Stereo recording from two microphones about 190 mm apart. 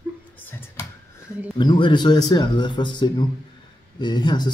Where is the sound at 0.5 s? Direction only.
10° left (ahead or behind).